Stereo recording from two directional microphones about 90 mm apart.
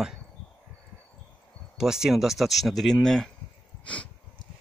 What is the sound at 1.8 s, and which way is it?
Speech, 5° right (ahead or behind).